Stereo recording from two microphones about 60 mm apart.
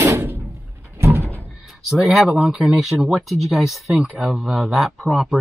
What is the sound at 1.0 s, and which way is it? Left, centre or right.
Door, right.